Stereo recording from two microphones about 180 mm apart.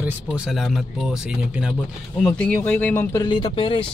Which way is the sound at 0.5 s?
Centre (ahead or behind).